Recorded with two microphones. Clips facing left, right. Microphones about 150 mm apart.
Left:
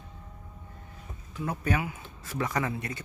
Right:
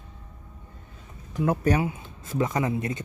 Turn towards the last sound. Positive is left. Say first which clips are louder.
# right 5 dB
turn(degrees=-20)  # may be behind; listen again after turning